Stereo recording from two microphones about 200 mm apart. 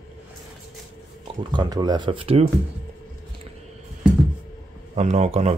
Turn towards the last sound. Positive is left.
turn(degrees=-35)  # may be behind; listen again after turning